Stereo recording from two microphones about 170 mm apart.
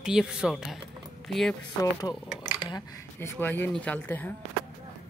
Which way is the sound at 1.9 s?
20° left (ahead or behind).